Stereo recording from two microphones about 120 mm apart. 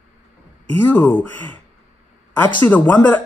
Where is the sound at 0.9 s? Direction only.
15° left (ahead or behind).